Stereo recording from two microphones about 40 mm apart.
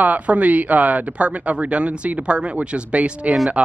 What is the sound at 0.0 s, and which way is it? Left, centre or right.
Speech, right.